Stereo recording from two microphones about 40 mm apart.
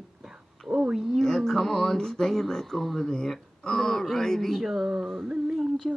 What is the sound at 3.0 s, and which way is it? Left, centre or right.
Speech, centre.